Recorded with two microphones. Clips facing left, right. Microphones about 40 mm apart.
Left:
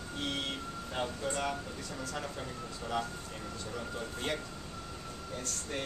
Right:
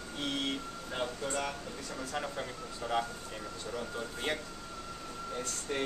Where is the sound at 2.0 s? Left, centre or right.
Centre.